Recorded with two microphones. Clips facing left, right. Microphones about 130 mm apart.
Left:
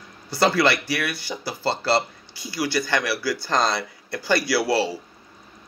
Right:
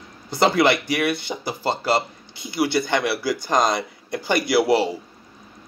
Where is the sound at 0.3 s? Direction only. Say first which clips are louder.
Right 2 dB; 20° right (ahead or behind).